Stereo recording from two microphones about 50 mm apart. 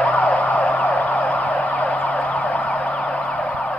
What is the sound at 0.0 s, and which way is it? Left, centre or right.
Emergency vehicle, left.